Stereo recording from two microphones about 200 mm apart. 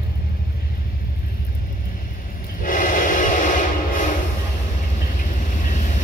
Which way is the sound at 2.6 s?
45° left (ahead or behind).